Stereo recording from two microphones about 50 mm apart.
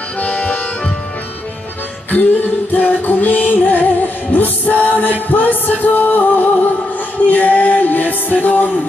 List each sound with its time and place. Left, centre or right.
0.2 s accordion: left
2.0 s music: left